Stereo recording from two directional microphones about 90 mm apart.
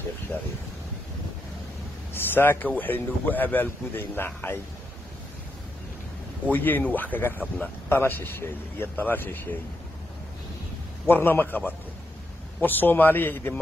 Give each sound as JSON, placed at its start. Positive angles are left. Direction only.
{"t": 0.3, "sound": "a man's voice", "side_deg": 25}
{"t": 2.1, "sound": "a man's voice", "side_deg": 25}
{"t": 6.5, "sound": "a man's voice", "side_deg": 20}
{"t": 11.1, "sound": "a man's voice", "side_deg": 25}